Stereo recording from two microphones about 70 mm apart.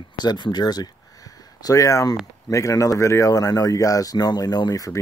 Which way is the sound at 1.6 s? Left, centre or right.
Left.